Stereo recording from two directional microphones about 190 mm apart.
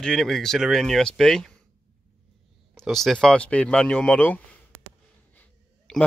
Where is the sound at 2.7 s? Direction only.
Centre (ahead or behind).